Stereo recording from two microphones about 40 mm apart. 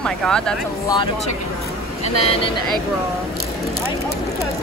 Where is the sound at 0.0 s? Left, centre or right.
Centre.